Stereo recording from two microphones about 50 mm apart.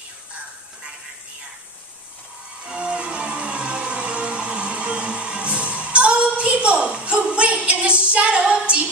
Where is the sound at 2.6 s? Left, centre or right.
Right.